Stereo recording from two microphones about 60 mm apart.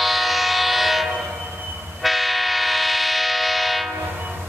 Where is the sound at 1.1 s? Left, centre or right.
Centre.